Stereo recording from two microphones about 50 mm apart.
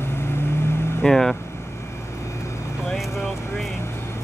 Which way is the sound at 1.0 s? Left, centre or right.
Centre.